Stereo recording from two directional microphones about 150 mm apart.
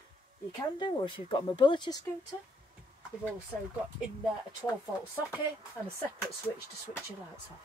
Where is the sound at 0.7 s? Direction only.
30° left (ahead or behind).